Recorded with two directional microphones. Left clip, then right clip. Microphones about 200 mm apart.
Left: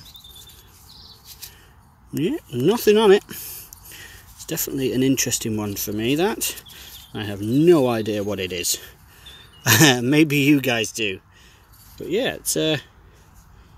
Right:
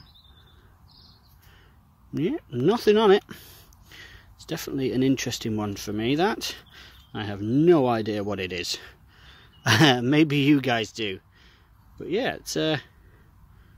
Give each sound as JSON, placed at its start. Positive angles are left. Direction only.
{"t": 2.1, "sound": "speech", "side_deg": 0}